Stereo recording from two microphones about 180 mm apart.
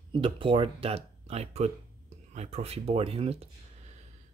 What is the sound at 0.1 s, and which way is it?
Speech, 30° right (ahead or behind).